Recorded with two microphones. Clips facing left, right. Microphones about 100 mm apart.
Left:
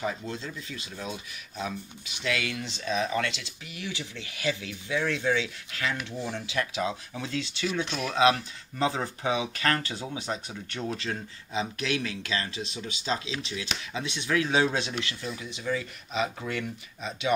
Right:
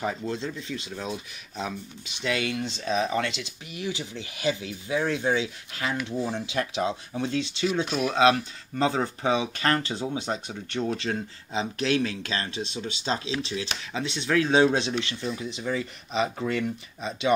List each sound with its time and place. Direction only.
0.0 s speech: 30° right (ahead or behind)
7.8 s speech: 10° right (ahead or behind)
8.1 s speech: 30° right (ahead or behind)